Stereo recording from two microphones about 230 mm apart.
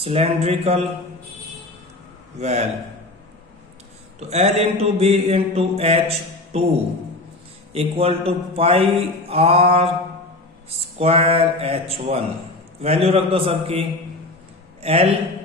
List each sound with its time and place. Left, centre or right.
0.0 s mantra: right
2.3 s mantra: right
4.2 s mantra: right
7.7 s mantra: right
14.8 s a man's voice: right